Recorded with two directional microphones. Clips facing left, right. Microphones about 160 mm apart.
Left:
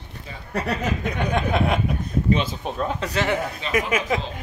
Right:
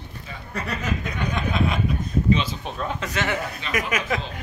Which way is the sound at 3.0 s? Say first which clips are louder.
Left 3 dB; 30° left (ahead or behind).